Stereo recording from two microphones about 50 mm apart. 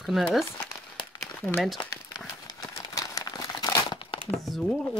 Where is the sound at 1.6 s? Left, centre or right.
Centre.